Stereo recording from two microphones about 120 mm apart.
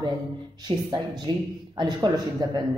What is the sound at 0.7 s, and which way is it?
Speech, 35° right (ahead or behind).